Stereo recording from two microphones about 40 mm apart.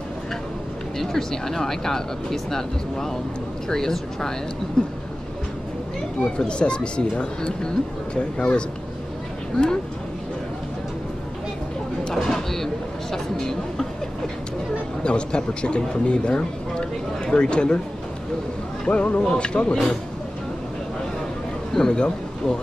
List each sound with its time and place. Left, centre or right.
0.9 s speech: centre
6.2 s speech: left
12.0 s a sound: centre
15.0 s speech: left
18.9 s speech: left
21.7 s speech: centre